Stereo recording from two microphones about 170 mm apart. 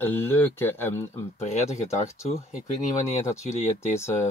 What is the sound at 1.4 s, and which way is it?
Speech, 40° left (ahead or behind).